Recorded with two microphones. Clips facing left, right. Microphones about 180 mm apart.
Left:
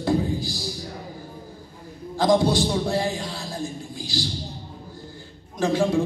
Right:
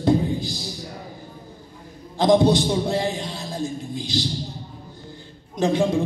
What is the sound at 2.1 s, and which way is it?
A man's voice, 20° right (ahead or behind).